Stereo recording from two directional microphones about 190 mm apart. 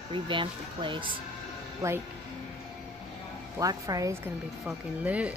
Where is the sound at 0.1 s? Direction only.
25° right (ahead or behind).